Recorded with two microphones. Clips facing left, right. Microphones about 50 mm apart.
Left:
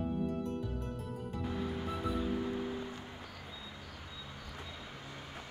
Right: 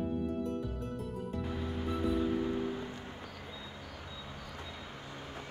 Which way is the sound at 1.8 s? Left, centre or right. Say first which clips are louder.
Right 7 dB; centre.